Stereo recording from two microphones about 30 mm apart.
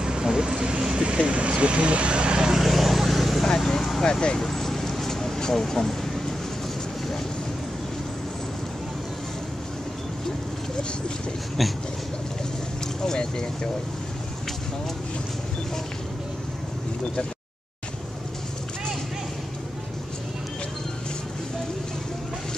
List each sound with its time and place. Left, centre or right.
0.0 s vehicle: right
1.1 s speech: right
2.5 s vehicle: centre
3.4 s speech: centre
4.0 s speech: left
4.4 s a sound: centre
5.5 s speech: centre
13.0 s speech: centre